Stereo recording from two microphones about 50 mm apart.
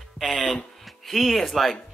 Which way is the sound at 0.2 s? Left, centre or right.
Centre.